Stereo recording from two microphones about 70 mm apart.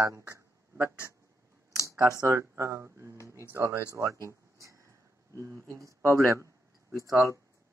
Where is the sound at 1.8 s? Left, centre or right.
Right.